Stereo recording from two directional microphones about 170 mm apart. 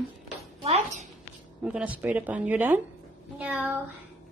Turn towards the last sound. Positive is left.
turn(degrees=-10)  # may be behind; listen again after turning